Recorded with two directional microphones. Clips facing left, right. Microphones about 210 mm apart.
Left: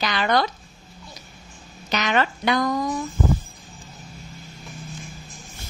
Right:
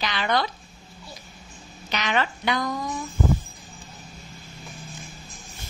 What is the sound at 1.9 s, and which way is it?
Speech, 45° left (ahead or behind).